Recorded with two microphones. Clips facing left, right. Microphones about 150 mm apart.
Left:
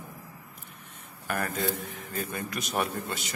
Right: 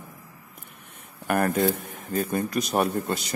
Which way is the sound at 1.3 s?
55° right (ahead or behind).